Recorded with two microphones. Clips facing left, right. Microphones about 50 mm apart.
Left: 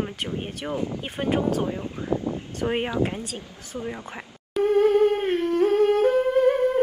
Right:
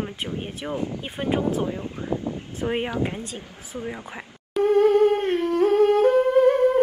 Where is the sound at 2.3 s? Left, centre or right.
Left.